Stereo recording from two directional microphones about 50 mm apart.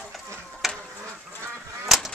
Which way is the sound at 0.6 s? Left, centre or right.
Centre.